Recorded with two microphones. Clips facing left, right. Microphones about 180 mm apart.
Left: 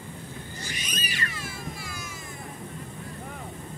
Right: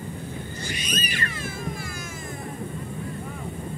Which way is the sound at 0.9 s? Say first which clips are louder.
Right 5 dB; 50° right (ahead or behind).